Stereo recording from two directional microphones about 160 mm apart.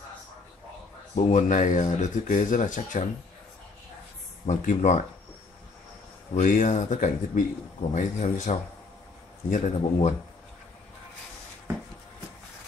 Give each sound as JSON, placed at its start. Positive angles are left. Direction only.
{"t": 1.1, "sound": "speech", "side_deg": 50}
{"t": 4.5, "sound": "speech", "side_deg": 50}
{"t": 6.3, "sound": "speech", "side_deg": 50}